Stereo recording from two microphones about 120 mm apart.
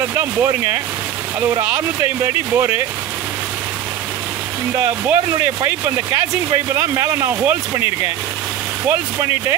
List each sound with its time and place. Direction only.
0.2 s speech: 20° right (ahead or behind)
4.7 s speech: 20° right (ahead or behind)
8.8 s speech: 20° right (ahead or behind)